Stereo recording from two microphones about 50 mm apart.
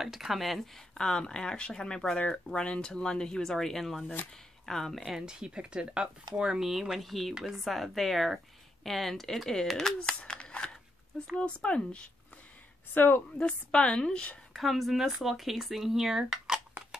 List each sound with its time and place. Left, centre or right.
0.0 s speech: centre
0.9 s speech: centre
5.0 s speech: centre
6.6 s speech: centre
9.9 s crumpling: centre
11.3 s a woman's voice: left
12.9 s a woman's voice: left
13.4 s a woman's voice: left
14.5 s speech: centre